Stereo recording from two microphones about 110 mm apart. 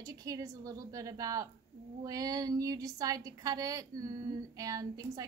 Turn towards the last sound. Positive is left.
turn(degrees=-35)  # may be behind; listen again after turning